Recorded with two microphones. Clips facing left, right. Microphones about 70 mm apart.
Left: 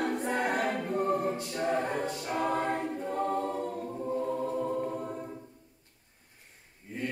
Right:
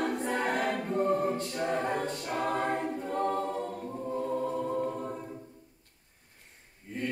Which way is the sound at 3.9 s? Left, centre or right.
Centre.